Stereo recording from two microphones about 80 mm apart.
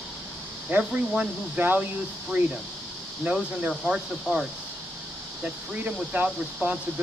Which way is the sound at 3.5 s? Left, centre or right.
Centre.